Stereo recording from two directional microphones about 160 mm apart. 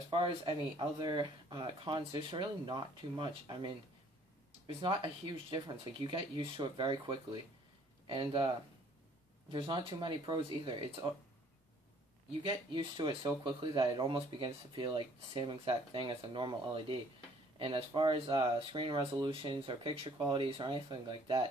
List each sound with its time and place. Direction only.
0.1 s speech: 35° right (ahead or behind)
4.8 s speech: 30° right (ahead or behind)
12.4 s speech: 30° right (ahead or behind)